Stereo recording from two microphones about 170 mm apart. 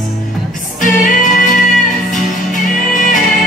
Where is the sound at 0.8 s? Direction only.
50° left (ahead or behind).